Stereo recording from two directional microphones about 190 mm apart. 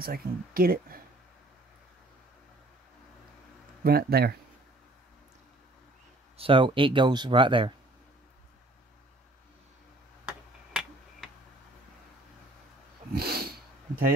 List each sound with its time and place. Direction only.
0.0 s speech: 50° right (ahead or behind)
3.8 s speech: 55° right (ahead or behind)
6.3 s speech: 30° right (ahead or behind)
10.2 s tick-tock: 5° right (ahead or behind)
13.1 s snort: 55° right (ahead or behind)